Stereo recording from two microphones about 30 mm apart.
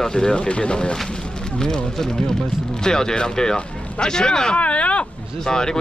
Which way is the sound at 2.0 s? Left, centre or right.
Centre.